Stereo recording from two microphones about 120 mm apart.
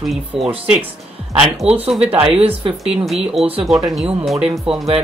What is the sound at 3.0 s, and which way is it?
Speech, centre (ahead or behind).